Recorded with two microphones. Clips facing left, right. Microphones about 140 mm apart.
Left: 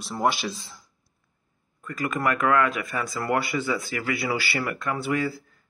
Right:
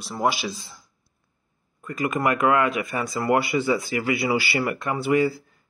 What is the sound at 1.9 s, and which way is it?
Speech, 15° right (ahead or behind).